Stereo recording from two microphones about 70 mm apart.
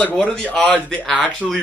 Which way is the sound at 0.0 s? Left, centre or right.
Centre.